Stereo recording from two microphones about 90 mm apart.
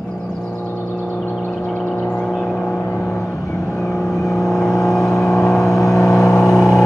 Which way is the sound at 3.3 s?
35° left (ahead or behind).